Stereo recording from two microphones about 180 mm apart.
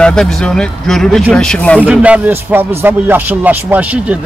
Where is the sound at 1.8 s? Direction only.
10° right (ahead or behind).